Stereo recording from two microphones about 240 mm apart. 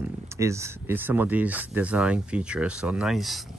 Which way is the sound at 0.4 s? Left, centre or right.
Centre.